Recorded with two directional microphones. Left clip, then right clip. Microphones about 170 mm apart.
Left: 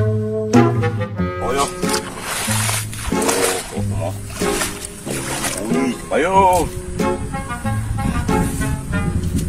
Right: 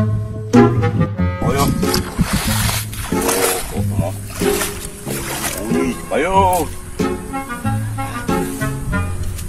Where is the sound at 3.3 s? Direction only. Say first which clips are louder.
Right 1 dB; 25° right (ahead or behind).